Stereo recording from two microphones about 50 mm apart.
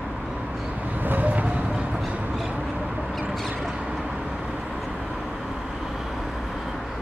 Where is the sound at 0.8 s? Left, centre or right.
Right.